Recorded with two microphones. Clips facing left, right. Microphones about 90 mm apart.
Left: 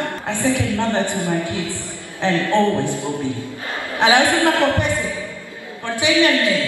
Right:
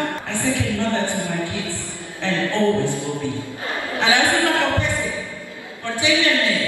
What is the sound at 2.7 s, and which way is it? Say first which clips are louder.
A man's voice: left 1 dB; 20° left (ahead or behind).